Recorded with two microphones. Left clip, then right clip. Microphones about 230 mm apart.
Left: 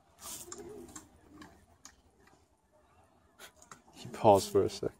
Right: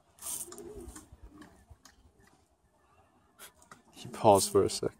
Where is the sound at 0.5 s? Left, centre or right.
Centre.